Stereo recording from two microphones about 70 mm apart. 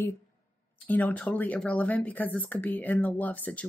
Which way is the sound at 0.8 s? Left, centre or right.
Left.